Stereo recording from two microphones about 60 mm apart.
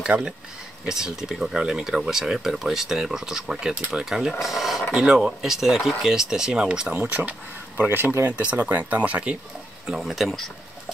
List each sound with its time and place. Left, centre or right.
0.1 s speech: centre
7.1 s speech: right
7.9 s speech: right
8.4 s speech: right
10.0 s speech: centre